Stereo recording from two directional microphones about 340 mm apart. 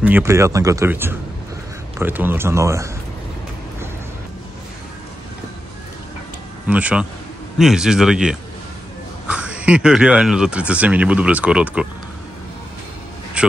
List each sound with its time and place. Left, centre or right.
0.0 s speech: centre
6.7 s speech: centre
13.4 s a sound: centre